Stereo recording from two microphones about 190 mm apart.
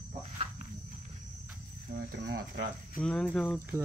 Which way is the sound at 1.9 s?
55° right (ahead or behind).